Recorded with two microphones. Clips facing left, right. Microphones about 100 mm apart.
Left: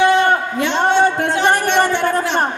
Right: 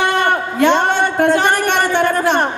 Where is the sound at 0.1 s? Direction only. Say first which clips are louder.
Left 2 dB; 50° right (ahead or behind).